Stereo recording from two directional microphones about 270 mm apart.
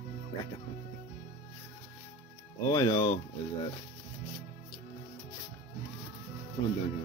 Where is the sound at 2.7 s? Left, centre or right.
Centre.